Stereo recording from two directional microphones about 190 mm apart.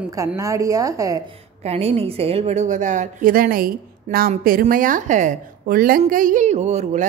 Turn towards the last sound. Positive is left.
turn(degrees=-35)  # may be behind; listen again after turning